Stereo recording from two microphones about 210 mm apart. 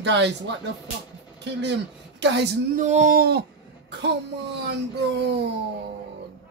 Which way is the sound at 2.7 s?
35° right (ahead or behind).